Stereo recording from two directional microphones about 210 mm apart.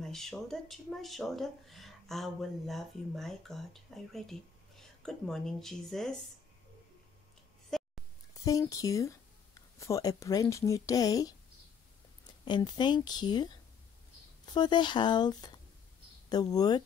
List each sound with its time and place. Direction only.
0.0 s speech: centre (ahead or behind)
7.7 s a sound: centre (ahead or behind)
8.5 s speech: 15° left (ahead or behind)
12.4 s a woman's voice: 20° left (ahead or behind)